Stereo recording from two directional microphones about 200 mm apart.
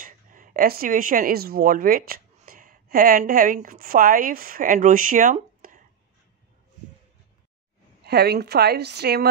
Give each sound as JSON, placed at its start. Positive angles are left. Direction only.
{"t": 0.0, "sound": "speech", "side_deg": -45}
{"t": 8.0, "sound": "a woman's voice", "side_deg": -50}